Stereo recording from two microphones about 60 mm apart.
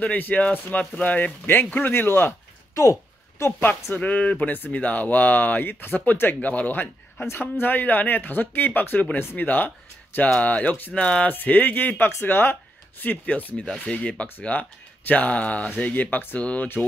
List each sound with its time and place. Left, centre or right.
0.0 s speech: left
2.7 s a sound: left
3.9 s speech: left
11.3 s speech: left
16.3 s speech: left